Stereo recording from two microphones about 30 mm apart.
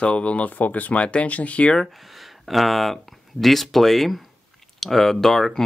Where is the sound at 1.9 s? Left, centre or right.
Centre.